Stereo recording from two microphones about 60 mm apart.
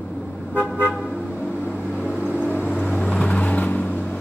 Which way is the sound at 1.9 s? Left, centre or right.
Left.